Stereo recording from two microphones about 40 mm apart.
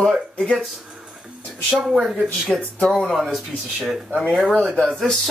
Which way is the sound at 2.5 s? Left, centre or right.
Centre.